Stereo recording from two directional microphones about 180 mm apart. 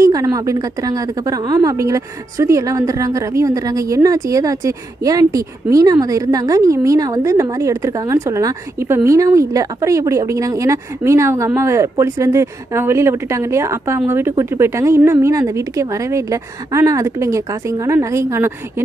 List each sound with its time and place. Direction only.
0.0 s a woman's voice: 20° right (ahead or behind)